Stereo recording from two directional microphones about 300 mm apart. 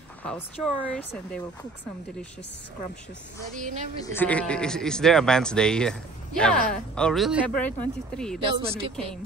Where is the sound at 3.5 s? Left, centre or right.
Right.